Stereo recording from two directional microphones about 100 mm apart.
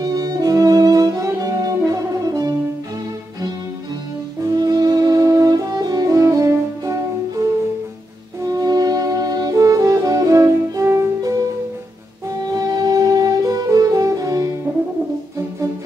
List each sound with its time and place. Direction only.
0.0 s music: 40° right (ahead or behind)
4.6 s music: 40° right (ahead or behind)
8.5 s music: 40° right (ahead or behind)
12.4 s music: 40° right (ahead or behind)